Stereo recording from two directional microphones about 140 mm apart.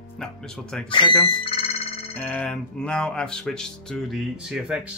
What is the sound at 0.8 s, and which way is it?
Speech, 35° left (ahead or behind).